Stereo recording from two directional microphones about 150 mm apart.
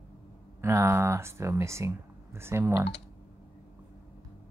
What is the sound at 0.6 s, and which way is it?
Speech, 20° right (ahead or behind).